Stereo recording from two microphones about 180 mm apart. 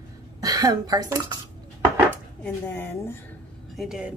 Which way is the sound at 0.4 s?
20° right (ahead or behind).